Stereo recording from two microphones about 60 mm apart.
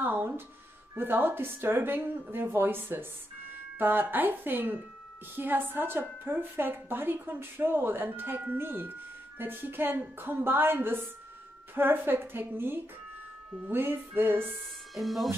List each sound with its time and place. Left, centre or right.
0.0 s a sound: right
0.9 s a woman's voice: right
15.0 s speech: centre